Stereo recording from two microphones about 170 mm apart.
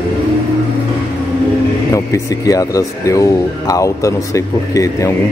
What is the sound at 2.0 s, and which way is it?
Speech, 20° left (ahead or behind).